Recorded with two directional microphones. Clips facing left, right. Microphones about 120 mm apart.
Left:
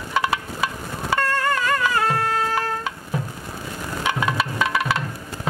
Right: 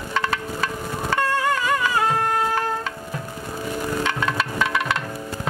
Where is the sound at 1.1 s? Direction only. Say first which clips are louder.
Even; 10° right (ahead or behind).